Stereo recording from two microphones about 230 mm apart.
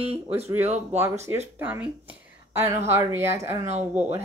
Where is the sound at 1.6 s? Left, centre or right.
Centre.